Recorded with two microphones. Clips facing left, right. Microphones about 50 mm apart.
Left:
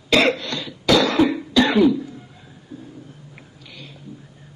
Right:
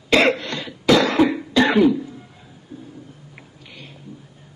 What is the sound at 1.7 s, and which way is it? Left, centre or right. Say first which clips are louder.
Throat clearing: right 1 dB; centre.